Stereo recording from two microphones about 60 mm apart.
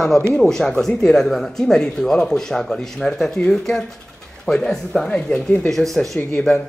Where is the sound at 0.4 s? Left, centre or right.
Centre.